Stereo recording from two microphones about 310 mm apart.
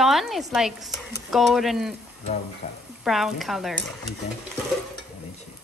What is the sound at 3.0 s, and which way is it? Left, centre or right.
Speech, centre.